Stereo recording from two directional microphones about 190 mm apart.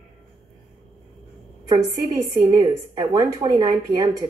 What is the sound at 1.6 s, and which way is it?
A woman's voice, 20° right (ahead or behind).